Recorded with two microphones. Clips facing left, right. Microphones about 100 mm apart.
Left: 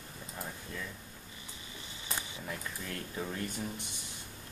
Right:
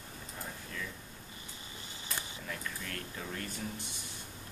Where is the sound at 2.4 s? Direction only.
20° left (ahead or behind).